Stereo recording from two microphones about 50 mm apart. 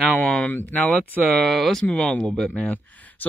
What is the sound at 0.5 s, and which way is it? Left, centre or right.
Speech, left.